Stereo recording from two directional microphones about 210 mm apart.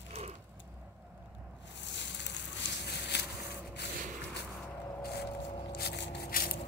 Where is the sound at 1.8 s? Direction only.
55° left (ahead or behind).